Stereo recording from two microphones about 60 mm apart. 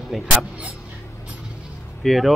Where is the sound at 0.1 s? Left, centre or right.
Centre.